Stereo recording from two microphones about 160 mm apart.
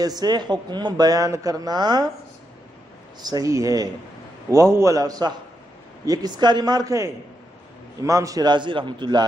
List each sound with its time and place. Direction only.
0.0 s speech: 25° right (ahead or behind)
3.2 s speech: 25° right (ahead or behind)